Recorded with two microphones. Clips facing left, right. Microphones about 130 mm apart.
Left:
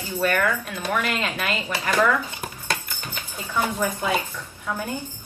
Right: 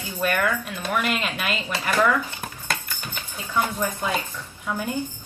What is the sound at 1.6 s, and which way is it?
Cutlery, 15° left (ahead or behind).